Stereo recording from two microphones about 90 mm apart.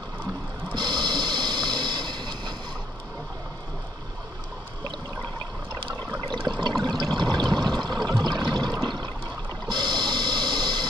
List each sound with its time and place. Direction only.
0.7 s a sound: 55° right (ahead or behind)
6.3 s water: 55° right (ahead or behind)
9.7 s printer: 55° right (ahead or behind)